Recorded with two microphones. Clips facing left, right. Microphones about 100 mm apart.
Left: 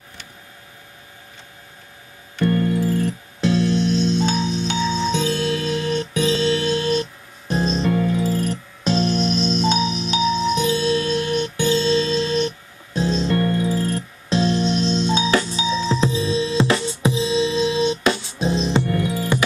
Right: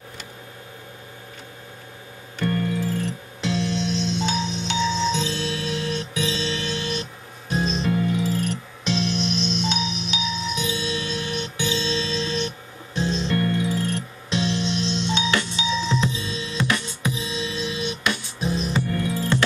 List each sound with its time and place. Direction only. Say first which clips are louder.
3.4 s music: left 6 dB; 50° left (ahead or behind); by 18.6 s 25° left (ahead or behind)
18.9 s music: left 2 dB; 15° left (ahead or behind)